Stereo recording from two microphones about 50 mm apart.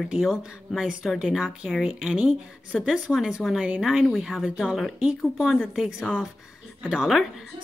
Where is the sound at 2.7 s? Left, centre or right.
Centre.